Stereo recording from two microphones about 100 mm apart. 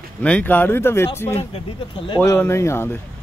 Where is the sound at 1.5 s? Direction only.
60° left (ahead or behind).